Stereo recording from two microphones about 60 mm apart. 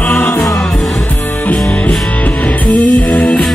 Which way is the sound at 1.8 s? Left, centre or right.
Left.